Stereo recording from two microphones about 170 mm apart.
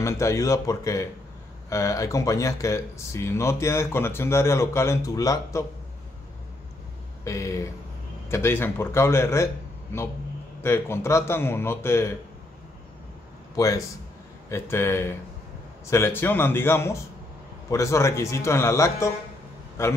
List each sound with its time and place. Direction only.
0.0 s speech: 15° left (ahead or behind)
7.2 s speech: 15° left (ahead or behind)
13.6 s speech: 20° left (ahead or behind)